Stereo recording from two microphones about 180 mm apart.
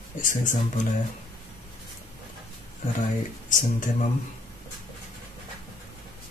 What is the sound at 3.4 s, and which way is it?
Speech, 45° left (ahead or behind).